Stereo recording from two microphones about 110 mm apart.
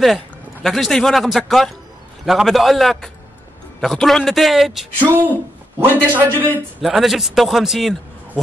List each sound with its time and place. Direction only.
0.0 s a man's voice: centre (ahead or behind)
5.8 s a man's voice: 20° right (ahead or behind)
6.8 s a man's voice: centre (ahead or behind)